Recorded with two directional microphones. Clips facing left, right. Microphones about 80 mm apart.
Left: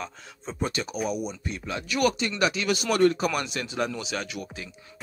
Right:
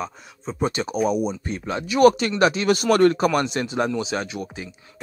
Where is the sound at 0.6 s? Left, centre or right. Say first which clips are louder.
Right 6 dB; right.